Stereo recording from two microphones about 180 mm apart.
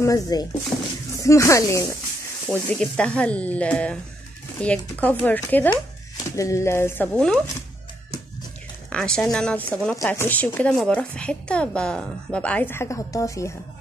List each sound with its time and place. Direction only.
0.0 s speech: 20° left (ahead or behind)
8.9 s a woman's voice: 5° left (ahead or behind)